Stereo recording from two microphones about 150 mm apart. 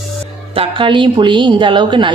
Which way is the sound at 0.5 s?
35° right (ahead or behind).